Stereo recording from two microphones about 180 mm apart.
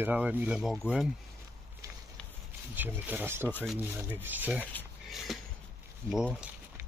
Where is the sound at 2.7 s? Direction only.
10° right (ahead or behind).